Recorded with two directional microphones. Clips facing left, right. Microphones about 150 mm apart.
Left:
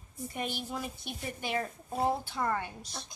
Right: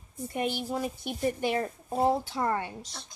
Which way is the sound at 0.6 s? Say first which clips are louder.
Right 6 dB; 35° right (ahead or behind).